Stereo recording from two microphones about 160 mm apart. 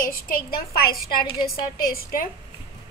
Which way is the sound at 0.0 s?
65° left (ahead or behind).